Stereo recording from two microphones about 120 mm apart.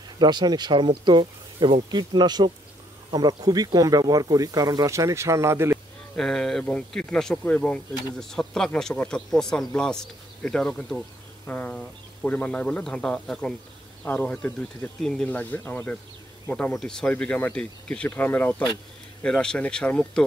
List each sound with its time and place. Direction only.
0.2 s speech: 35° right (ahead or behind); by 5.8 s 20° right (ahead or behind)
6.1 s speech: 5° left (ahead or behind)